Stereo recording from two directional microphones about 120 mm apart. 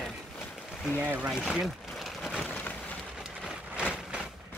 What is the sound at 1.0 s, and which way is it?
Speech, 15° right (ahead or behind).